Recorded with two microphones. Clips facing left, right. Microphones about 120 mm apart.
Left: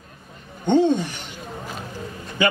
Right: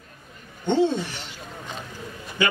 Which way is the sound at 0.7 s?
15° left (ahead or behind).